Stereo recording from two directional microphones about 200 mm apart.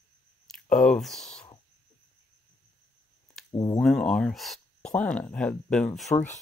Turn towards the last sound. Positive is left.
turn(degrees=5)  # may be behind; listen again after turning